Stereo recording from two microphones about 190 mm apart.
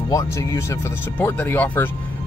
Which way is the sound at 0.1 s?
15° left (ahead or behind).